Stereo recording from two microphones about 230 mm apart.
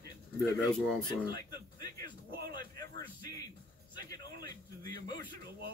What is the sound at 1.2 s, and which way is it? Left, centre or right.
Speech, right.